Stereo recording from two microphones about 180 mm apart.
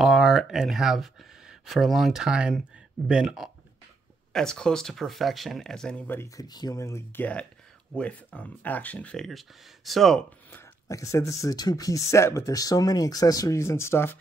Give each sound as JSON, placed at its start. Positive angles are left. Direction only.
{"t": 0.0, "sound": "speech", "side_deg": 0}
{"t": 10.9, "sound": "speech", "side_deg": 15}